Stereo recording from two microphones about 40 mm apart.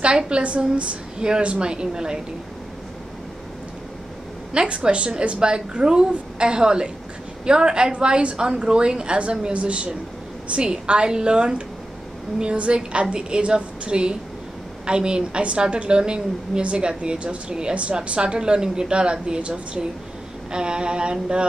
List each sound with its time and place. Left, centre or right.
0.4 s a woman's voice: right
4.6 s a woman's voice: right